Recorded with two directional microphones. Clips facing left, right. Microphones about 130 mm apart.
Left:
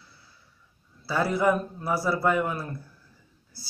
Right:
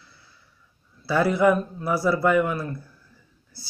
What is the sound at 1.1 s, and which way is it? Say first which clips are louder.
A man's voice: right 4 dB; 15° left (ahead or behind).